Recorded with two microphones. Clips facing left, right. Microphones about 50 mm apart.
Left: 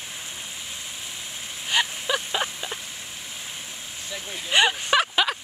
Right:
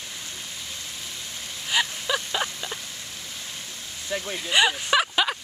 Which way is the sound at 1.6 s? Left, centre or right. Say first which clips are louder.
Left 1 dB; centre.